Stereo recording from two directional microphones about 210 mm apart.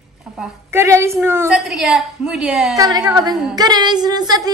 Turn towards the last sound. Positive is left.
turn(degrees=-20)  # may be behind; listen again after turning